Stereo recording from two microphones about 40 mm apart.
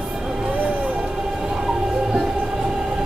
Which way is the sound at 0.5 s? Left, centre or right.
Right.